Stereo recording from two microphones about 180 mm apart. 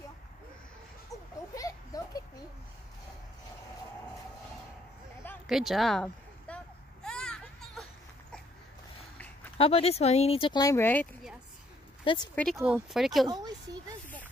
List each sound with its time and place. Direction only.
1.5 s a sound: 20° left (ahead or behind)
5.5 s speech: centre (ahead or behind)
7.1 s a sound: 5° left (ahead or behind)
9.6 s speech: 35° left (ahead or behind); by 11.1 s 10° left (ahead or behind)
12.0 s speech: 30° left (ahead or behind)
12.5 s speech: 15° right (ahead or behind)
12.9 s speech: centre (ahead or behind)
13.3 s speech: 20° right (ahead or behind)